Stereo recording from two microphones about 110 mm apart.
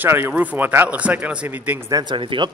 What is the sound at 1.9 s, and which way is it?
Speech, 35° right (ahead or behind).